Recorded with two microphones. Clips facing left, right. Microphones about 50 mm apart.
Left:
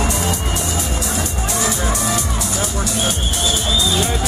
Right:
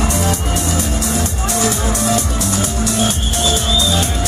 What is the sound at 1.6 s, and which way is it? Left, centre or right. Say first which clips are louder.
Music: right 3 dB; centre.